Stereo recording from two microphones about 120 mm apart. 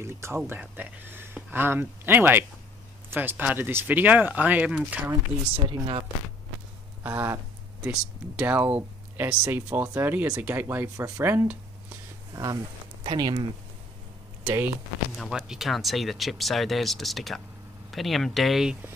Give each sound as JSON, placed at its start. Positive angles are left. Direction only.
{"t": 0.0, "sound": "speech", "side_deg": -20}
{"t": 5.7, "sound": "speech", "side_deg": -45}
{"t": 7.0, "sound": "speech", "side_deg": -15}
{"t": 8.4, "sound": "speech", "side_deg": -15}
{"t": 12.4, "sound": "speech", "side_deg": -25}
{"t": 13.0, "sound": "speech", "side_deg": -40}
{"t": 14.4, "sound": "speech", "side_deg": -15}
{"t": 15.1, "sound": "speech", "side_deg": 0}